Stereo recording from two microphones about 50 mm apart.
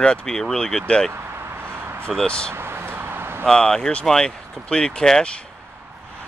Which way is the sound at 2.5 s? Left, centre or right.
Right.